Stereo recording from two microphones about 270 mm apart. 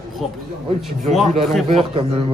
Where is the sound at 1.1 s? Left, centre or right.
Centre.